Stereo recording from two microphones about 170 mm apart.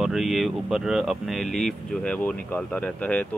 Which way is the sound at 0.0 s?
Centre (ahead or behind).